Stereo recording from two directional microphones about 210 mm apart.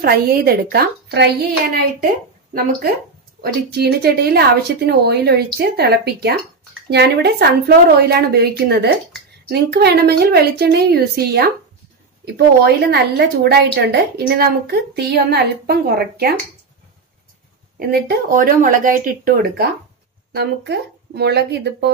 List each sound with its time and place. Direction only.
0.0 s a woman's voice: 45° right (ahead or behind)
3.3 s a woman's voice: 50° right (ahead or behind)
17.7 s a woman's voice: 45° right (ahead or behind)